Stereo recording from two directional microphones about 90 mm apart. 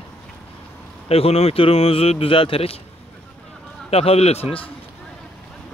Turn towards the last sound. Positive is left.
turn(degrees=90)